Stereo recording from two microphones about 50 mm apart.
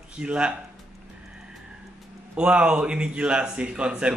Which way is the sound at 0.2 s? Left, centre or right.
Right.